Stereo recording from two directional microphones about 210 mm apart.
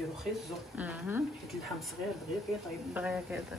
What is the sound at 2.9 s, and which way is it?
Speech, 5° right (ahead or behind).